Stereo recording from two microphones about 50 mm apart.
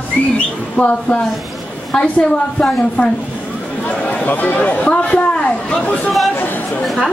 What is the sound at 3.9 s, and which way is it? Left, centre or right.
Speech, left.